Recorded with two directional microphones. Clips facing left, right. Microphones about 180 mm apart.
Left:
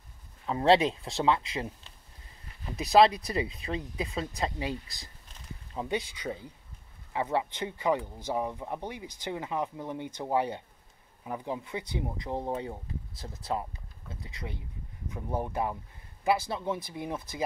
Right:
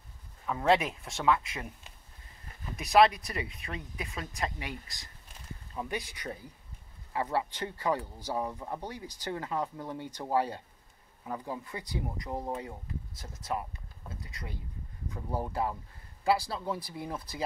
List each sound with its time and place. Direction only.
0.5 s speech: 25° left (ahead or behind)
7.1 s speech: 20° left (ahead or behind)